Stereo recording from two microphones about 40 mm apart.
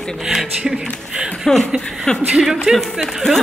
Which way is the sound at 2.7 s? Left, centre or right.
Centre.